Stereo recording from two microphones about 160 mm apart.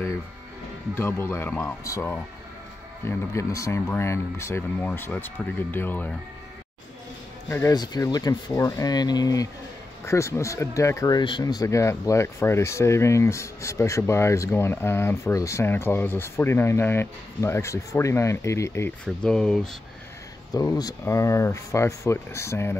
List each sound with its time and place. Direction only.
0.9 s speech: 15° left (ahead or behind)
7.4 s speech: 15° left (ahead or behind)
19.0 s speech: 5° left (ahead or behind)
20.5 s speech: 25° left (ahead or behind)